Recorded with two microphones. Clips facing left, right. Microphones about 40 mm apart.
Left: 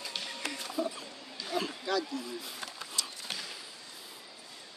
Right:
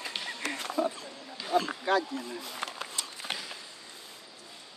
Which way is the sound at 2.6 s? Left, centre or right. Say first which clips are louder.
Right 6 dB; right.